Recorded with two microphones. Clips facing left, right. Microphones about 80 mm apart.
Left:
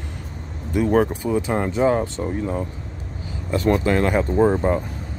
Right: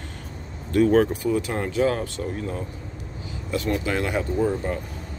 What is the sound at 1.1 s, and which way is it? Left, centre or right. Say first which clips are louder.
Speech: left 3 dB; left.